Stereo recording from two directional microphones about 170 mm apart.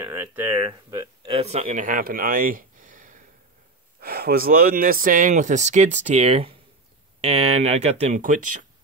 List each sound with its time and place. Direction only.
0.1 s speech: 15° right (ahead or behind); by 8.5 s 50° right (ahead or behind)